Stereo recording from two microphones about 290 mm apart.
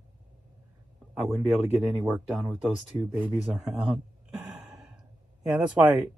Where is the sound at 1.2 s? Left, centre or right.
Centre.